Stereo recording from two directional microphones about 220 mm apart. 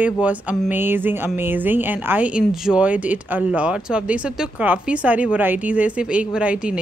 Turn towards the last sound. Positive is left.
turn(degrees=-5)  # may be behind; listen again after turning